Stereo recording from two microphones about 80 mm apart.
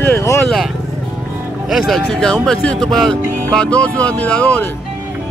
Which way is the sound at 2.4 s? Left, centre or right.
Centre.